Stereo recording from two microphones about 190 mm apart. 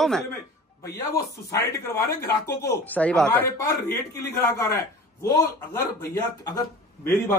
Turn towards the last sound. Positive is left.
turn(degrees=15)  # may be behind; listen again after turning